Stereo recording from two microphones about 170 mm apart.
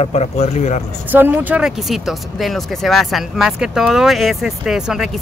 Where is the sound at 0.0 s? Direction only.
40° left (ahead or behind).